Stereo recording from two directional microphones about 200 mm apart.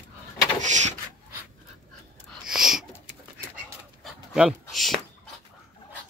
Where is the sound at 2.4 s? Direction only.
Centre (ahead or behind).